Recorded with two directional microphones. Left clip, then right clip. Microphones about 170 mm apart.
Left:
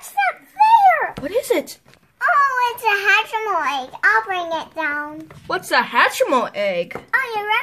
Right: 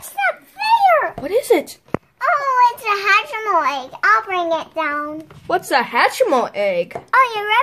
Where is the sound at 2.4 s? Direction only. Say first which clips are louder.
Right 2 dB; 40° right (ahead or behind).